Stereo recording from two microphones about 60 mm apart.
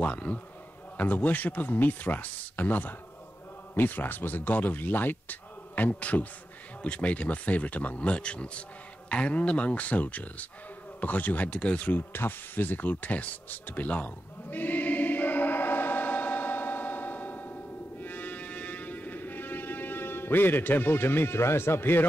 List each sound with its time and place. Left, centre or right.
0.0 s speech: left
12.1 s a sound: left
18.0 s music: left